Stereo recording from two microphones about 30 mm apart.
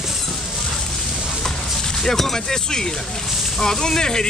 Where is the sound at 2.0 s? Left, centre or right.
Centre.